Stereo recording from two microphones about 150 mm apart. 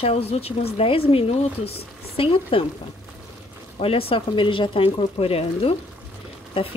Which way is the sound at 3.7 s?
40° left (ahead or behind).